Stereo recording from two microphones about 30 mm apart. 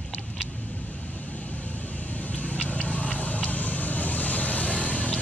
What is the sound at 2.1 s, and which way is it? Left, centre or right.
Vehicle, left.